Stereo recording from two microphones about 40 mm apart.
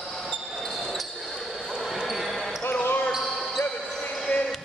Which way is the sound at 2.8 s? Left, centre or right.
Left.